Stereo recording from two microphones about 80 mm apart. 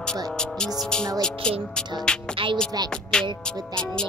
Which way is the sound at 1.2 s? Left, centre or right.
Centre.